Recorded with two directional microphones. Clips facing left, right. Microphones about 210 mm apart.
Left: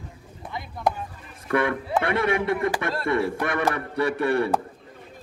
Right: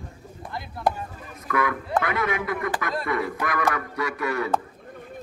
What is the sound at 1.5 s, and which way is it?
A man's voice, 30° left (ahead or behind).